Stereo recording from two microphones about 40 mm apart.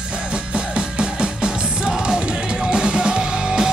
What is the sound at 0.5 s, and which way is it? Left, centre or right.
Music, right.